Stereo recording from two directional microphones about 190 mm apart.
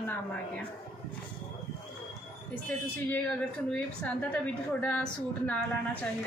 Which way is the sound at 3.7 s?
5° left (ahead or behind).